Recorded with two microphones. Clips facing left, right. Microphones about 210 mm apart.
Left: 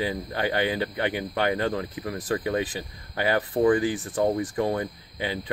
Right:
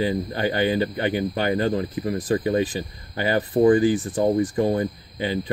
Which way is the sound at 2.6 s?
5° left (ahead or behind).